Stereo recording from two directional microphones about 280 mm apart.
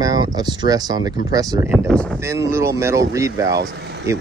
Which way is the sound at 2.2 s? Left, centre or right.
Centre.